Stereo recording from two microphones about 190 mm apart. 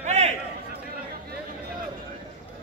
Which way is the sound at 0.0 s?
35° right (ahead or behind).